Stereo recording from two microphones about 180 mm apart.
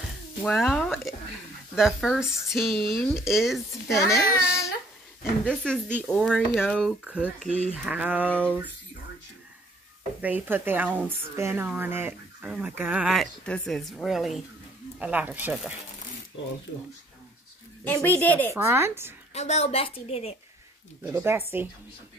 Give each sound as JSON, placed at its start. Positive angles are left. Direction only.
{"t": 0.4, "sound": "speech", "side_deg": 5}
{"t": 3.9, "sound": "a child's voice", "side_deg": 15}
{"t": 5.4, "sound": "a woman's voice", "side_deg": 5}
{"t": 10.2, "sound": "a woman's voice", "side_deg": -10}
{"t": 17.8, "sound": "a child's voice", "side_deg": 10}
{"t": 18.5, "sound": "a woman's voice", "side_deg": -15}
{"t": 19.3, "sound": "a woman's voice", "side_deg": 35}
{"t": 21.0, "sound": "a woman's voice", "side_deg": -15}